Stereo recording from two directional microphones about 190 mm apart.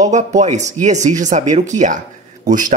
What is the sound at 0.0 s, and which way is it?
Speech, 40° right (ahead or behind).